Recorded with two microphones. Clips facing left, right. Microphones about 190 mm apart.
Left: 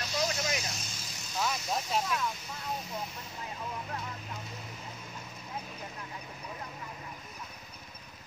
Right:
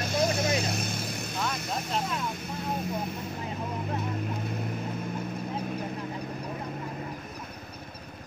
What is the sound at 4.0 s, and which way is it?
Vehicle, 55° right (ahead or behind).